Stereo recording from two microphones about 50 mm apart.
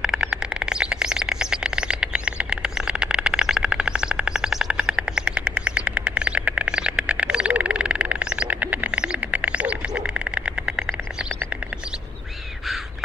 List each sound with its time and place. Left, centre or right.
0.0 s bird: centre